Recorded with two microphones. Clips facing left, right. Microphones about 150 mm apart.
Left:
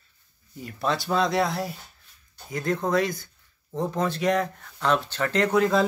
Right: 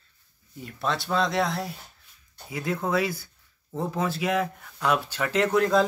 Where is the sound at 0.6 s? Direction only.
Centre (ahead or behind).